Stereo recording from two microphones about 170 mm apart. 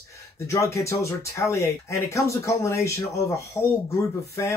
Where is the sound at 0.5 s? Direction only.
20° left (ahead or behind).